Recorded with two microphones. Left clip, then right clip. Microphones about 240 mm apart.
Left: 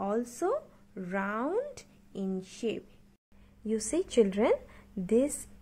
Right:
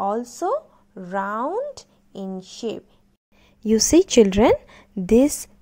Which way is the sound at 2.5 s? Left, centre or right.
Centre.